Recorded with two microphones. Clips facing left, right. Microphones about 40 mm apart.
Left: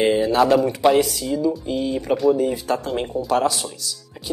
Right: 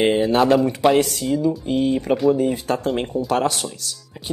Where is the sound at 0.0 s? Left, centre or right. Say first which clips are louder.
Even; right.